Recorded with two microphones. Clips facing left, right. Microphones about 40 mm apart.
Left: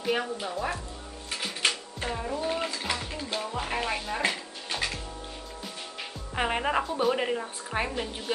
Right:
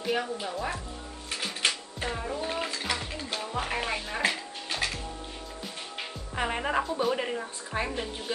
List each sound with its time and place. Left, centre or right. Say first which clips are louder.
0.0 s speech: left 1 dB; centre
1.3 s music: left 1 dB; centre
3.6 s speech: left 1 dB; centre
6.3 s speech: left 2 dB; centre
6.8 s speech: left 1 dB; centre